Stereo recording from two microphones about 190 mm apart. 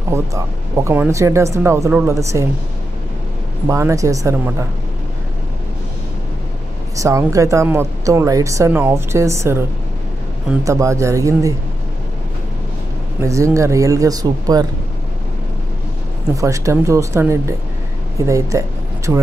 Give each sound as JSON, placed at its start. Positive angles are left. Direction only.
{"t": 0.8, "sound": "speech", "side_deg": -15}
{"t": 3.6, "sound": "speech", "side_deg": -15}
{"t": 7.0, "sound": "speech", "side_deg": -15}
{"t": 10.6, "sound": "speech", "side_deg": -15}
{"t": 13.2, "sound": "speech", "side_deg": -15}
{"t": 16.3, "sound": "speech", "side_deg": -15}